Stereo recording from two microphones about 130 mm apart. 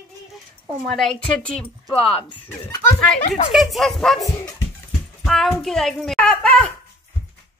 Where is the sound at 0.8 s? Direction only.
5° left (ahead or behind).